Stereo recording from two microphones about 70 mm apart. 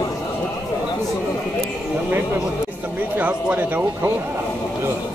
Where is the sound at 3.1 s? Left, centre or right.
Right.